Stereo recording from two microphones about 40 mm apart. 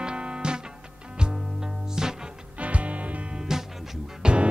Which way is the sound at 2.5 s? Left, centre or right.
Right.